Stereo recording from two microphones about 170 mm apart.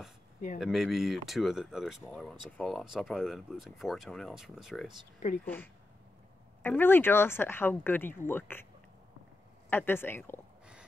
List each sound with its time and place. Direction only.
0.6 s speech: centre (ahead or behind)
5.4 s speech: 10° left (ahead or behind)
9.7 s speech: 10° left (ahead or behind)